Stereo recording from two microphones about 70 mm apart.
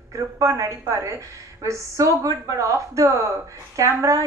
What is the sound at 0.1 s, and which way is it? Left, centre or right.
A woman's voice, right.